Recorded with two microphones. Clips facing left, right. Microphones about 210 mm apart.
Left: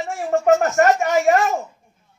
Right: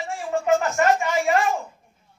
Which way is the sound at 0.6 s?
45° left (ahead or behind).